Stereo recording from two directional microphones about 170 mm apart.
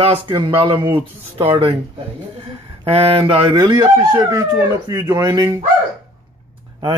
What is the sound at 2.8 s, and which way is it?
Speech, 35° right (ahead or behind).